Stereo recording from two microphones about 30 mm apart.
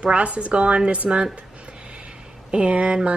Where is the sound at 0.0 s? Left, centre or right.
Right.